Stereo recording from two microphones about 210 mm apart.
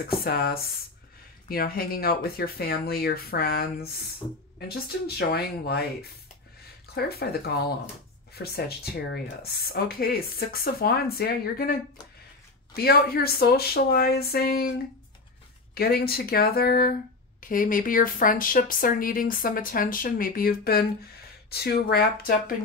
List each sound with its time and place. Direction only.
0.2 s speech: 45° left (ahead or behind)
7.0 s speech: 50° left (ahead or behind)
12.7 s speech: 45° left (ahead or behind)
15.7 s a woman's voice: 45° left (ahead or behind)